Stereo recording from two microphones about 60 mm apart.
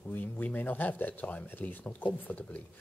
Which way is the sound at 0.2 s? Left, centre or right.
Left.